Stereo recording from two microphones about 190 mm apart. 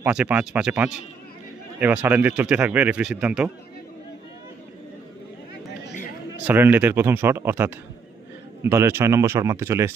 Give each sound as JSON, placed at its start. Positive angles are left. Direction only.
{"t": 0.0, "sound": "speech", "side_deg": -5}
{"t": 6.4, "sound": "speech", "side_deg": -10}